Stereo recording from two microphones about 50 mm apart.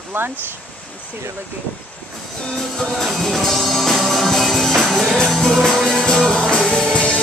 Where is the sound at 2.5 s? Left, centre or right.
Centre.